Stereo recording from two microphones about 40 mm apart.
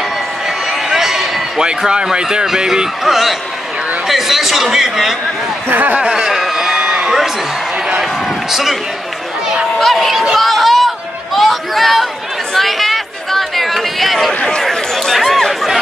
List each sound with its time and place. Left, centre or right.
0.8 s a sound: centre
2.2 s a man's voice: centre
5.7 s speech: right
5.9 s a sound: centre
8.0 s a man's voice: centre
9.8 s speech: centre
10.3 s chatter: centre
11.3 s a sound: centre
12.5 s chatter: centre